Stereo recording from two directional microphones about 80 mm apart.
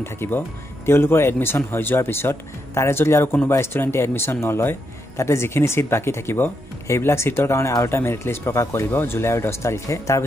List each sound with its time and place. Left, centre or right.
0.0 s speech: left